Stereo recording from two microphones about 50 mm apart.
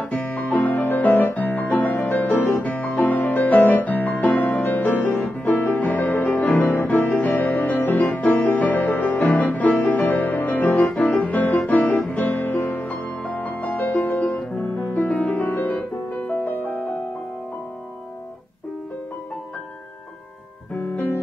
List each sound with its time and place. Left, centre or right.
0.0 s music: left
5.9 s music: left
8.9 s music: left
9.2 s music: left
14.6 s music: left
15.7 s music: left
20.9 s music: left